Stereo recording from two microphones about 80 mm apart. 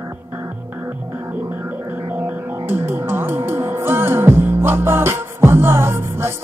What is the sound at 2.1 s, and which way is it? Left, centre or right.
Speech, right.